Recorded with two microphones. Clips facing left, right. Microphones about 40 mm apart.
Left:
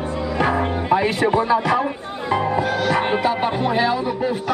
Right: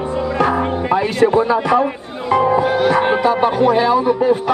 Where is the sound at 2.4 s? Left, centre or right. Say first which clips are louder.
Right 8 dB; centre.